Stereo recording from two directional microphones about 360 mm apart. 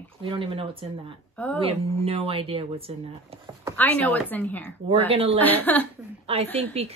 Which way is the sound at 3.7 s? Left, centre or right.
Centre.